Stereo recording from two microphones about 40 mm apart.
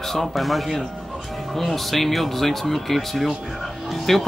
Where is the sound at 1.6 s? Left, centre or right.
Centre.